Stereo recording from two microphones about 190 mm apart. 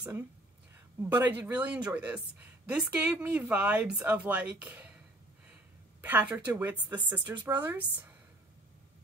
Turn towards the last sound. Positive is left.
turn(degrees=-10)  # may be behind; listen again after turning